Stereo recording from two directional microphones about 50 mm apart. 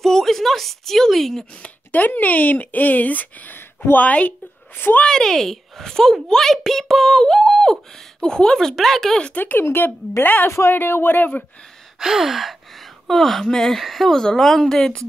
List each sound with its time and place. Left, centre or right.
0.0 s speech: centre
1.9 s speech: left
5.0 s a woman's voice: centre
9.3 s speech: left
9.6 s speech: left
10.5 s speech: left
10.8 s speech: left
12.0 s gasp: centre
13.1 s a woman's voice: centre